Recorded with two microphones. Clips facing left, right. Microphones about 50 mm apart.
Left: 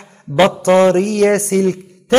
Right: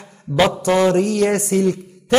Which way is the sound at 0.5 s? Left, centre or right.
Left.